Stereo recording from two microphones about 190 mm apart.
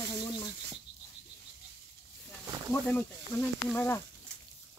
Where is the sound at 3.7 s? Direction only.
10° left (ahead or behind).